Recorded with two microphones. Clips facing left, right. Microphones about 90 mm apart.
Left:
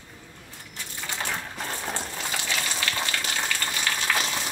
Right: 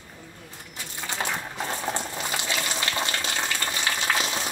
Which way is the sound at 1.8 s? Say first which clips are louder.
Right 3 dB; 15° right (ahead or behind).